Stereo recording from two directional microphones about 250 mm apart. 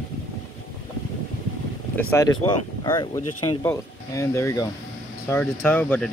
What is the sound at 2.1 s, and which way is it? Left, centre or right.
Speech, centre.